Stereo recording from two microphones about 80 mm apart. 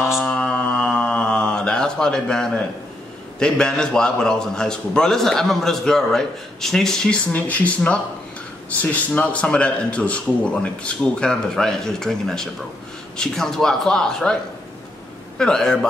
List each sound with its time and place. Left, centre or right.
0.0 s mantra: centre
0.3 s mantra: centre
3.3 s a man's voice: centre
7.3 s a man's voice: centre
15.3 s a man's voice: centre